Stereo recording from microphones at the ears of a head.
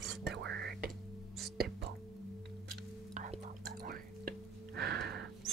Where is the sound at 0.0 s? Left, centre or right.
Right.